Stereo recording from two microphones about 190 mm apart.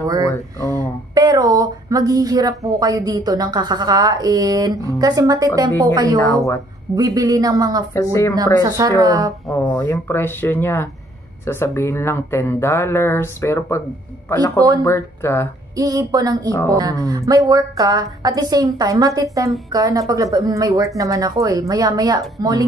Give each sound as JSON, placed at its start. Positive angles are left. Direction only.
{"t": 0.0, "sound": "a sound", "side_deg": -20}
{"t": 0.7, "sound": "a woman's voice", "side_deg": -20}
{"t": 7.0, "sound": "a woman's voice", "side_deg": -20}
{"t": 7.9, "sound": "speech", "side_deg": 15}
{"t": 8.6, "sound": "a woman's voice", "side_deg": -20}
{"t": 9.5, "sound": "speech", "side_deg": 10}
{"t": 15.7, "sound": "a woman's voice", "side_deg": -20}